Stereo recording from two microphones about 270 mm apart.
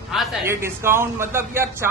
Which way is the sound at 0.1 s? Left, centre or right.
Centre.